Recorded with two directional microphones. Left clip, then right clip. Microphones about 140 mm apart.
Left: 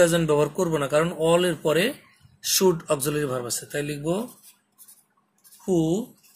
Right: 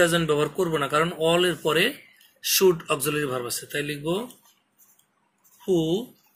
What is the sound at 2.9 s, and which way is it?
Speech, 90° left.